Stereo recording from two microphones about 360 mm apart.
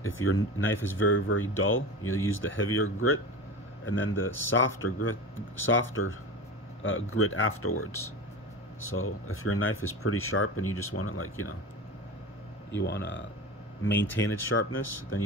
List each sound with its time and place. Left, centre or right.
0.0 s speech: left
12.7 s speech: left
13.9 s speech: centre
14.3 s speech: left